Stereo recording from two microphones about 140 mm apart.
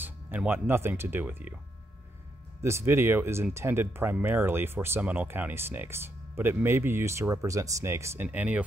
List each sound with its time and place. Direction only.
0.0 s speech: 10° right (ahead or behind)
2.6 s speech: 20° right (ahead or behind)